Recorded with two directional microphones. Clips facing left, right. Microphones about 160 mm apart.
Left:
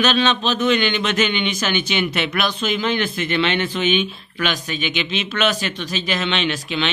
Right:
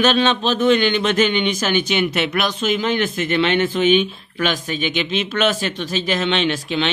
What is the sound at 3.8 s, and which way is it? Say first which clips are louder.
Speech: right 4 dB; 45° right (ahead or behind).